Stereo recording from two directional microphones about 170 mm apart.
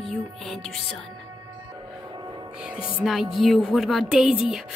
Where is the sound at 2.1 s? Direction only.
25° right (ahead or behind).